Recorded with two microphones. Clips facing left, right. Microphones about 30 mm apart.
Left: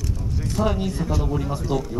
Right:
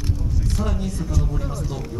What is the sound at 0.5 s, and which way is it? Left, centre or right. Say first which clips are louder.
Speech: left 6 dB; left.